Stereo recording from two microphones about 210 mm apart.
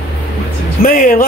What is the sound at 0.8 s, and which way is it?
Speech, 45° left (ahead or behind).